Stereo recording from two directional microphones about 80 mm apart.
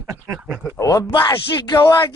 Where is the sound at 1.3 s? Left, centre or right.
Left.